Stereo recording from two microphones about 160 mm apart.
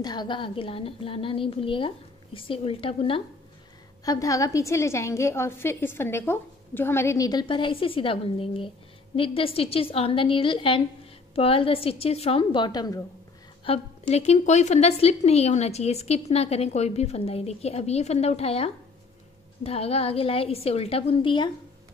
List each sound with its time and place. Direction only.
0.0 s a woman's voice: 25° left (ahead or behind)
4.0 s a woman's voice: 20° left (ahead or behind)
13.7 s a woman's voice: 40° left (ahead or behind)